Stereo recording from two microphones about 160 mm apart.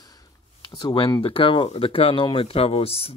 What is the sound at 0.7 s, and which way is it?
Speech, 30° left (ahead or behind).